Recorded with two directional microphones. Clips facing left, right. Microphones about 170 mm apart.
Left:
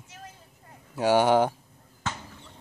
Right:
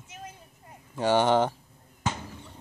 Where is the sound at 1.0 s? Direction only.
10° left (ahead or behind).